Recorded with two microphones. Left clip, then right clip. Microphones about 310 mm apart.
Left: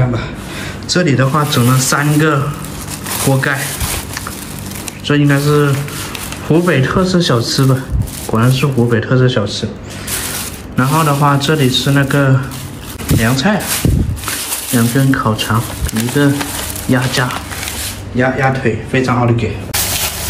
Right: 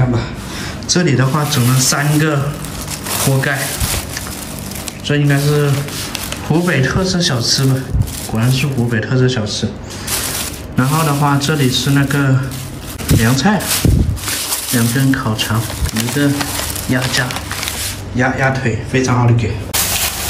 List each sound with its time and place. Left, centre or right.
0.8 s speech: centre
5.0 s speech: centre
10.8 s speech: centre
14.7 s speech: centre